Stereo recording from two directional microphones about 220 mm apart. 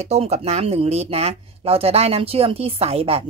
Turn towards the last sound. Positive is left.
turn(degrees=-25)  # may be behind; listen again after turning